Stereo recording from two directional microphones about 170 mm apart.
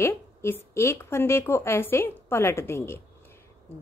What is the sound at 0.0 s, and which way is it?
A woman's voice, 15° left (ahead or behind).